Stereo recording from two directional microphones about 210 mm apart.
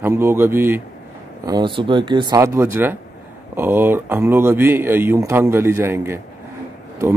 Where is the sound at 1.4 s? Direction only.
20° right (ahead or behind).